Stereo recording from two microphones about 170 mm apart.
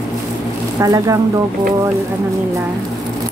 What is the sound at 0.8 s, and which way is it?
Speech, 20° right (ahead or behind).